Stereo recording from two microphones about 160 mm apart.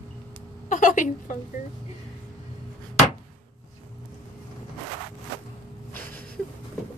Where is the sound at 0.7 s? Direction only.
55° left (ahead or behind).